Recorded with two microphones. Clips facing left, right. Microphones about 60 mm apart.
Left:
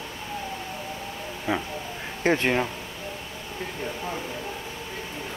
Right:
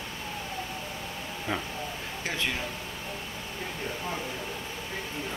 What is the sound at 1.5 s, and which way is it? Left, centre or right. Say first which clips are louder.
Speech: left 5 dB; centre.